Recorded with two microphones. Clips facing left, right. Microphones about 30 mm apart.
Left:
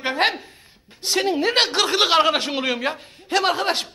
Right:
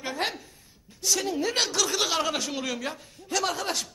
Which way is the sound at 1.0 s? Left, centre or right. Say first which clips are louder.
Left 6 dB; left.